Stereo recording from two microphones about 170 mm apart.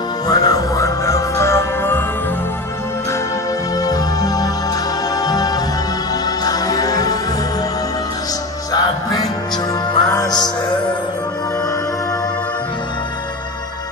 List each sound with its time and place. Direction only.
0.3 s music: 20° left (ahead or behind)
3.7 s music: 20° left (ahead or behind)
8.7 s music: 25° left (ahead or behind)